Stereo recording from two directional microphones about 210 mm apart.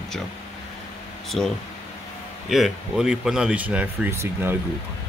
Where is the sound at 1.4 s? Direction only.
5° left (ahead or behind).